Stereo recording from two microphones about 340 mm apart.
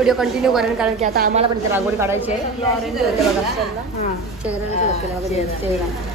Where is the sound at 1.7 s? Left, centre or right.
Centre.